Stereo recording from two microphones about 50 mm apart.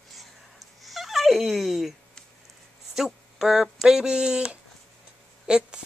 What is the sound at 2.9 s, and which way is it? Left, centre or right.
Speech, centre.